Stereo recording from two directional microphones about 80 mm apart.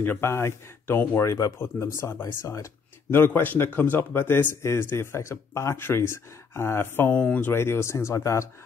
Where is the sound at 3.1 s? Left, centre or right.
Left.